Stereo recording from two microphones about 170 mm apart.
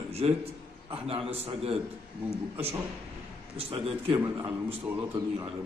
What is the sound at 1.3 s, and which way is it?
Speech, 35° right (ahead or behind).